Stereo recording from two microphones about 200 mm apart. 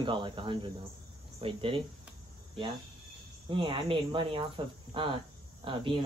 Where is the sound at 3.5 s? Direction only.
25° right (ahead or behind).